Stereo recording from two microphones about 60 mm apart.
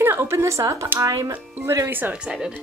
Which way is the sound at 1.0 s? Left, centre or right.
Right.